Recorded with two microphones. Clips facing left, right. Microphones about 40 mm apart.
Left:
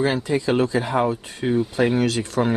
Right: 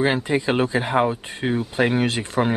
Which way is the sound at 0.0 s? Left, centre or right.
Right.